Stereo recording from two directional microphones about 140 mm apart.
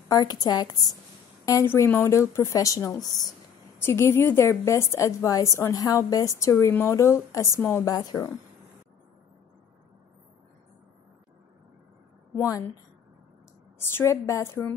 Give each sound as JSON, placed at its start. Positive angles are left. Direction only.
{"t": 0.1, "sound": "a woman's voice", "side_deg": 30}
{"t": 12.4, "sound": "a woman's voice", "side_deg": 25}
{"t": 13.7, "sound": "a woman's voice", "side_deg": 20}